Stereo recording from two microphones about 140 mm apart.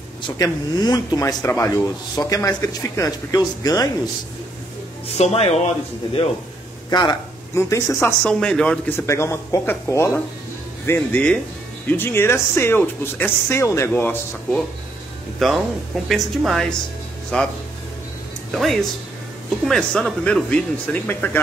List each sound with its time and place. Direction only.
0.2 s speech: 30° left (ahead or behind)
5.0 s speech: 45° left (ahead or behind)
6.9 s speech: 30° left (ahead or behind)
7.5 s speech: 20° left (ahead or behind)
8.0 s speech: 5° left (ahead or behind)
15.3 s speech: centre (ahead or behind)
18.5 s speech: centre (ahead or behind)